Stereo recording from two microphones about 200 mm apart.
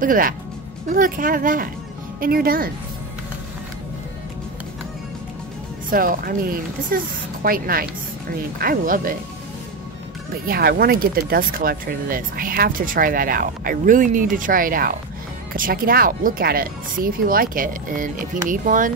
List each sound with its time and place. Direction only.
0.0 s speech: 45° right (ahead or behind)
5.9 s speech: 45° right (ahead or behind)
10.4 s speech: 50° right (ahead or behind)